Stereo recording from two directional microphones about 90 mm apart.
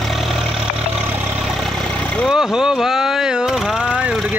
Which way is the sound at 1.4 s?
Centre (ahead or behind).